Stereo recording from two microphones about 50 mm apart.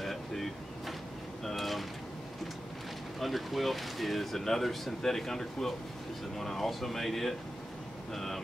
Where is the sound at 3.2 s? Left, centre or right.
Centre.